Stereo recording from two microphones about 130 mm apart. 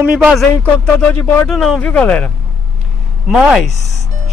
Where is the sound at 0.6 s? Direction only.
15° left (ahead or behind).